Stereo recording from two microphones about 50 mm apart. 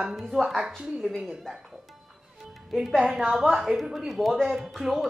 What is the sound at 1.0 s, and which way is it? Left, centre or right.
Speech, centre.